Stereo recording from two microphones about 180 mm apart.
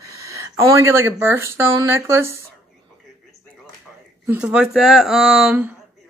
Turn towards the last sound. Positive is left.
turn(degrees=-5)  # may be behind; listen again after turning